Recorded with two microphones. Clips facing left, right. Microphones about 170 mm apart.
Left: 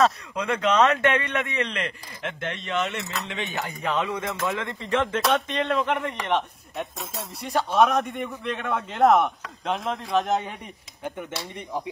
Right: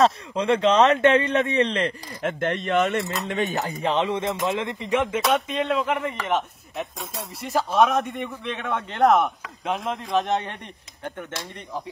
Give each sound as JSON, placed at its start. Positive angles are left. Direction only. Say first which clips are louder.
{"t": 0.0, "sound": "speech", "louder": "right 2 dB", "side_deg": -30}
{"t": 3.8, "sound": "speech", "louder": "right 3 dB", "side_deg": -25}
{"t": 5.2, "sound": "speech", "louder": "right 1 dB", "side_deg": 0}